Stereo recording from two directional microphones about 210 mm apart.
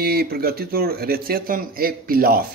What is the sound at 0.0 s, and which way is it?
Speech, 45° right (ahead or behind).